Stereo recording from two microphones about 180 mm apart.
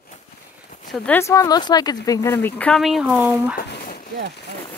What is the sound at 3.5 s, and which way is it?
Speech, 60° left (ahead or behind).